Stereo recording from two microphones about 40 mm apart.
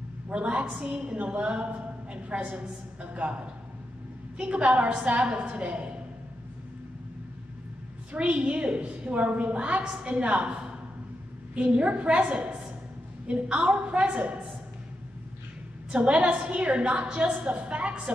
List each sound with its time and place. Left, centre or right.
0.3 s a woman's voice: right
8.1 s a woman's voice: right
15.9 s a woman's voice: right